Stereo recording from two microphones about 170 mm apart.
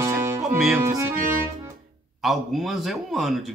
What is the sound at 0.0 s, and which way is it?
Music, 15° right (ahead or behind).